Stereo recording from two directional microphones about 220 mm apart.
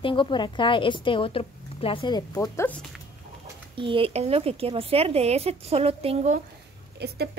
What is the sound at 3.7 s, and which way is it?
Speech, 25° right (ahead or behind).